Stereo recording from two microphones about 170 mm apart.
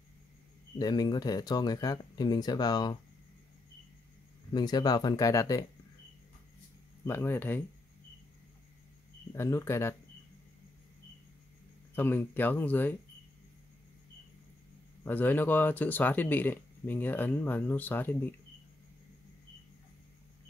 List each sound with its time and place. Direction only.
0.7 s speech: 20° left (ahead or behind)
4.5 s speech: 25° left (ahead or behind)
7.1 s speech: 15° left (ahead or behind)
9.3 s speech: 15° left (ahead or behind)
11.9 s speech: 10° left (ahead or behind)
15.0 s speech: 10° left (ahead or behind)